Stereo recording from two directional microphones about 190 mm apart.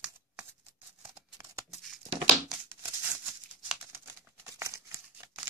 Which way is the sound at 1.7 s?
Centre (ahead or behind).